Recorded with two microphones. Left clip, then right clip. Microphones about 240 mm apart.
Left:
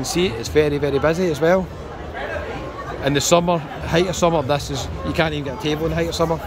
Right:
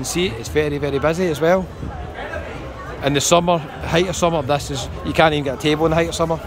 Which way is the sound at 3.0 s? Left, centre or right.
Centre.